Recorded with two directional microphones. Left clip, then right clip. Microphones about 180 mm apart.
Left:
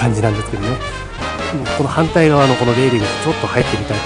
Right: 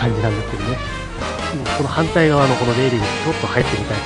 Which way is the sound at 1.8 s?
5° left (ahead or behind).